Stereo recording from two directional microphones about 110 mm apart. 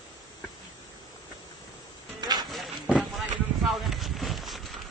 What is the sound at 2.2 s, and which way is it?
Music, 40° right (ahead or behind).